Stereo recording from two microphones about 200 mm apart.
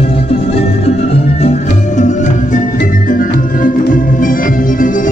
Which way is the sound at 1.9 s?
35° left (ahead or behind).